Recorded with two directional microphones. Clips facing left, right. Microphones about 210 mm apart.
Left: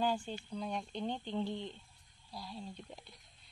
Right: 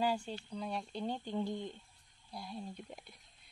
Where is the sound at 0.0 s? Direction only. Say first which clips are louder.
Even; 5° right (ahead or behind).